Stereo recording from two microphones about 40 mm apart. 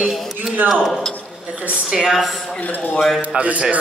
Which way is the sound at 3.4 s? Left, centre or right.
Right.